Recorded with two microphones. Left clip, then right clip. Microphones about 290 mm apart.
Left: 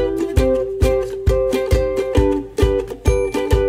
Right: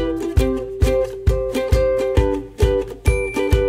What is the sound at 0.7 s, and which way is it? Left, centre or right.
Music, centre.